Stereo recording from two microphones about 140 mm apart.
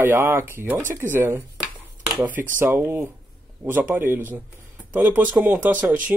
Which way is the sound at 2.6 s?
15° right (ahead or behind).